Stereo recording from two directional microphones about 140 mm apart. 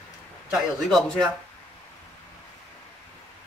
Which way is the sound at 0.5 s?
Centre (ahead or behind).